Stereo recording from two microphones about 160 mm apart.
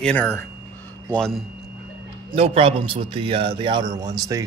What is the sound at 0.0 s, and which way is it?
Speech, 10° left (ahead or behind).